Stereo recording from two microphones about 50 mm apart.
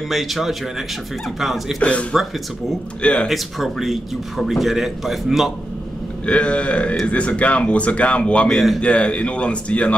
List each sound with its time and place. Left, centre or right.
0.1 s a man's voice: centre
1.8 s speech: left
3.3 s a man's voice: centre
6.2 s speech: left
8.5 s a man's voice: centre
8.8 s speech: left